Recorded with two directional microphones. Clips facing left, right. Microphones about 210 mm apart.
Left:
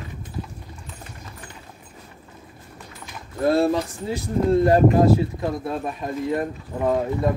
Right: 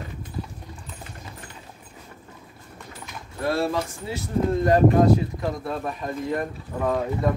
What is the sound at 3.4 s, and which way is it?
Speech, 25° left (ahead or behind).